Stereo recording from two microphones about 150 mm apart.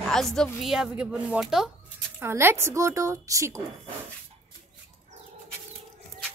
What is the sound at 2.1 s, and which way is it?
A woman's voice, 15° right (ahead or behind).